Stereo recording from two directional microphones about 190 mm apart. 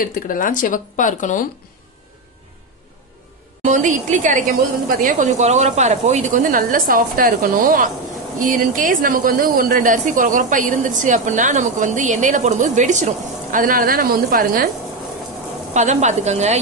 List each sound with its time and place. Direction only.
0.0 s speech: 45° left (ahead or behind)
3.6 s a woman's voice: 40° right (ahead or behind)
15.7 s a woman's voice: 40° right (ahead or behind)